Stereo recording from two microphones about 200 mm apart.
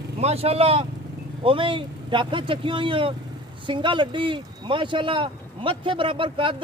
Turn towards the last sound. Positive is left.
turn(degrees=-25)  # may be behind; listen again after turning